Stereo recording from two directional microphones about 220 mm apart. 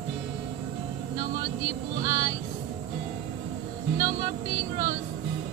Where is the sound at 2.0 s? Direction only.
20° right (ahead or behind).